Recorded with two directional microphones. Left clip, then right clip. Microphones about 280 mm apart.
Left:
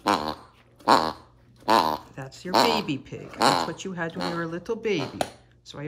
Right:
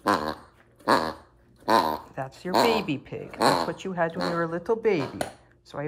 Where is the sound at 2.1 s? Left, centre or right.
Centre.